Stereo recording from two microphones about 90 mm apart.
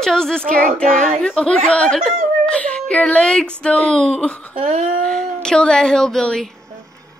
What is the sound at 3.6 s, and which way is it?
Speech, 10° left (ahead or behind).